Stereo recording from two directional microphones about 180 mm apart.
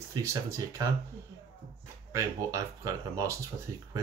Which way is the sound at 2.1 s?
15° right (ahead or behind).